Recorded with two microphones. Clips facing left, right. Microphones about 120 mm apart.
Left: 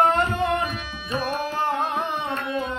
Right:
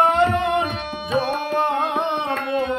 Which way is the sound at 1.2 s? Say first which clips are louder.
Right 4 dB; 60° right (ahead or behind).